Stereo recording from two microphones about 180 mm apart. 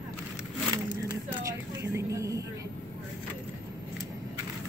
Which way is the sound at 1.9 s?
15° right (ahead or behind).